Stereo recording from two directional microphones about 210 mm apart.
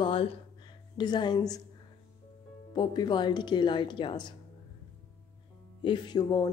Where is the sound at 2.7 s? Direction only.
20° left (ahead or behind).